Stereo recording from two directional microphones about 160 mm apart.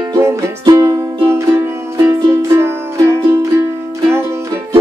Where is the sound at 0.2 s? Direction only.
20° right (ahead or behind).